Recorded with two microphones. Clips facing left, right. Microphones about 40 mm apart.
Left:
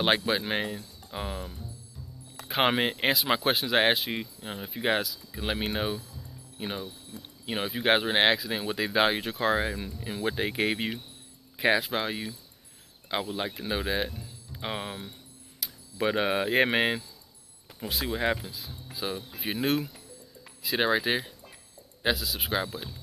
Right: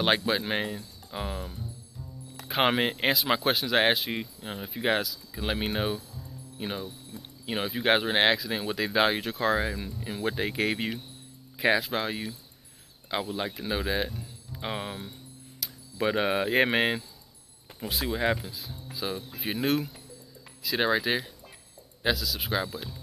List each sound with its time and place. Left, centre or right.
0.0 s speech: centre